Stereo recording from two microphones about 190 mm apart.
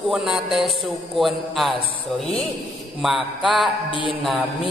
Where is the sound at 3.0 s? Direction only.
Centre (ahead or behind).